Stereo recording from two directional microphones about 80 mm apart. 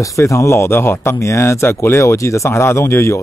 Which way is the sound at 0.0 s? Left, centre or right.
Left.